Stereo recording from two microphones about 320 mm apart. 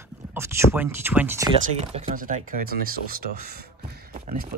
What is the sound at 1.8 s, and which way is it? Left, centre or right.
Speech, centre.